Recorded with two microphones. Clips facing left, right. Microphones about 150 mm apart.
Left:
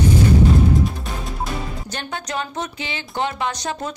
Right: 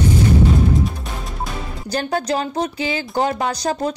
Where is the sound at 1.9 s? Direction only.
35° right (ahead or behind).